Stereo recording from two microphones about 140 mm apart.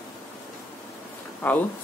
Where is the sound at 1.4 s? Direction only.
15° left (ahead or behind).